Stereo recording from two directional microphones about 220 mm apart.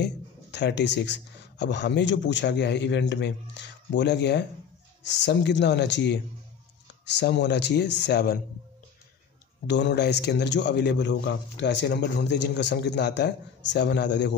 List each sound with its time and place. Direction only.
0.0 s a man's voice: 50° left (ahead or behind)
9.7 s a man's voice: 50° left (ahead or behind)